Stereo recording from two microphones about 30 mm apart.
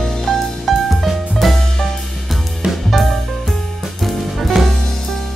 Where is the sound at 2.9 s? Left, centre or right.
Centre.